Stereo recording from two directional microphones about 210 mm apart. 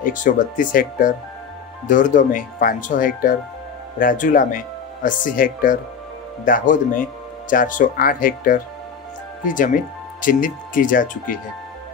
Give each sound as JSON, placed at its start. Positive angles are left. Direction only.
{"t": 0.0, "sound": "speech", "side_deg": 40}
{"t": 10.2, "sound": "speech", "side_deg": 40}